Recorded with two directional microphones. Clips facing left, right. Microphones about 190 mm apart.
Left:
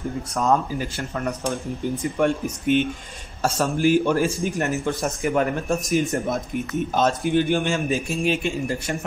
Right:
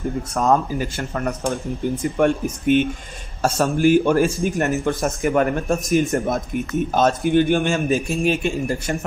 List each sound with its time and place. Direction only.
0.3 s a man's voice: 50° right (ahead or behind)